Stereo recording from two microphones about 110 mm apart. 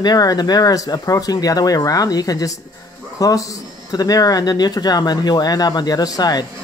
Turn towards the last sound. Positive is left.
turn(degrees=35)  # may be behind; listen again after turning